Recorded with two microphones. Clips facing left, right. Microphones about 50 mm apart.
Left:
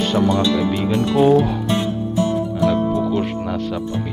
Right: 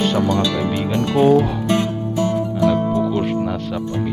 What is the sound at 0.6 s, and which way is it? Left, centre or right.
Speech, centre.